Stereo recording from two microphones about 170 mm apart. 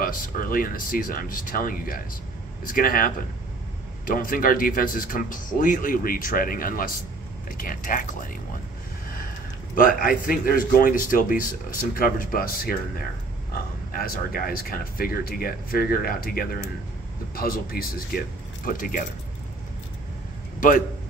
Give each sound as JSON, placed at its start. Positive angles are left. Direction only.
{"t": 0.0, "sound": "speech", "side_deg": 55}
{"t": 9.8, "sound": "speech", "side_deg": 55}